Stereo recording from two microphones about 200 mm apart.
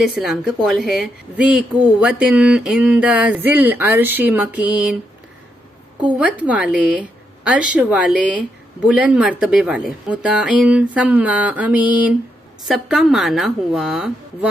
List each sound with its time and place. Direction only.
0.2 s a woman's voice: centre (ahead or behind)
6.0 s a woman's voice: 5° right (ahead or behind)